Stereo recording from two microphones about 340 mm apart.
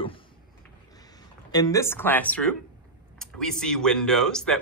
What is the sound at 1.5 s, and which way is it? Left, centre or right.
Speech, centre.